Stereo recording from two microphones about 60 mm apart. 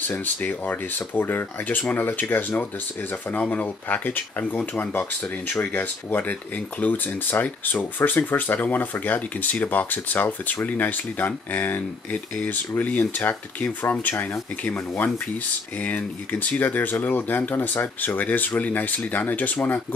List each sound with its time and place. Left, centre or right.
0.0 s speech: left
5.7 s speech: left